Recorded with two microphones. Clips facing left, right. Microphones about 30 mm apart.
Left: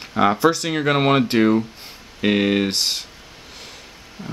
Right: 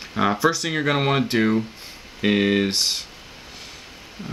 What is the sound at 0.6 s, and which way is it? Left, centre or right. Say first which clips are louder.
Speech: left 3 dB; centre.